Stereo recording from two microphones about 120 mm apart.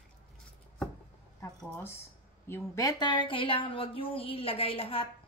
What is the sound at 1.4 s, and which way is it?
Speech, 20° left (ahead or behind).